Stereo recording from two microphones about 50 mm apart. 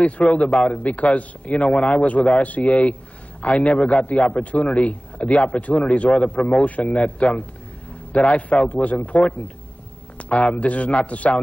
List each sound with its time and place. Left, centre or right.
0.2 s a man's voice: left